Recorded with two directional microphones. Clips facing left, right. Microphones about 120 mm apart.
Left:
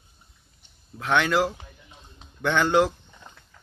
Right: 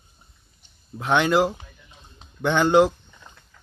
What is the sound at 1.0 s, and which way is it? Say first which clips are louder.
Speech: right 3 dB; 20° right (ahead or behind).